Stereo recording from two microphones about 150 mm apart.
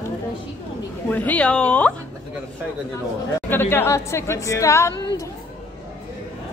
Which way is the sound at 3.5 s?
15° left (ahead or behind).